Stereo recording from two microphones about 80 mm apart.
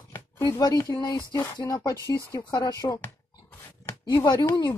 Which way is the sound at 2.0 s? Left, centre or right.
Left.